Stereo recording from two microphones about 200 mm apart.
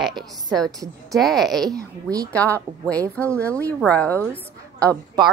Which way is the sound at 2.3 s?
10° left (ahead or behind).